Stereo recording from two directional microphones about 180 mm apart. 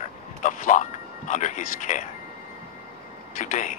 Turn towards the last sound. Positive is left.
turn(degrees=45)  # may be behind; listen again after turning